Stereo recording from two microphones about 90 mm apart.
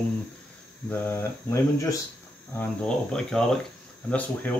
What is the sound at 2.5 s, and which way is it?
Speech, 10° left (ahead or behind).